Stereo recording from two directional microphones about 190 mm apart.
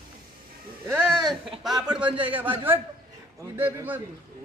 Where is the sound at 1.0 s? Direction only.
Centre (ahead or behind).